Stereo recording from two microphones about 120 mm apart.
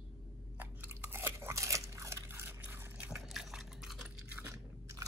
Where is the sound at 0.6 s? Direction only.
15° right (ahead or behind).